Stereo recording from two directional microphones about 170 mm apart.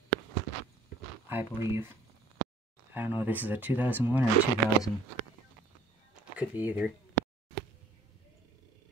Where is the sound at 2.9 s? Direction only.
10° right (ahead or behind).